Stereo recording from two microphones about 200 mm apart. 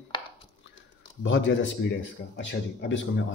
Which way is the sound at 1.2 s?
70° left (ahead or behind).